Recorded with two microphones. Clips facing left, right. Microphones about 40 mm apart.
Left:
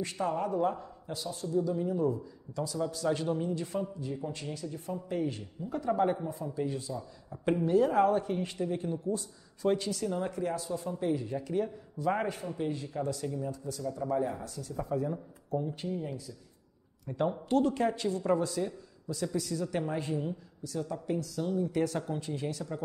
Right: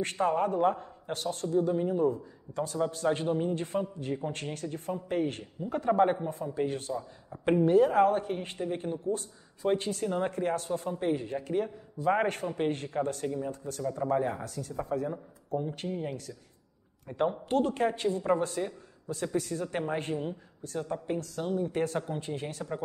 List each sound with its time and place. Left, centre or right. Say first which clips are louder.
0.0 s a man's voice: right 4 dB; right
7.4 s a man's voice: right 3 dB; right
12.3 s a man's voice: right 4 dB; right
14.4 s speech: right 3 dB; right
15.9 s a man's voice: right 2 dB; right
17.2 s speech: even; right
17.9 s a man's voice: right 1 dB; right